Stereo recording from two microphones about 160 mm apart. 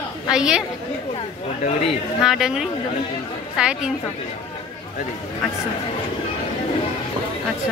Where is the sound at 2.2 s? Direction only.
5° right (ahead or behind).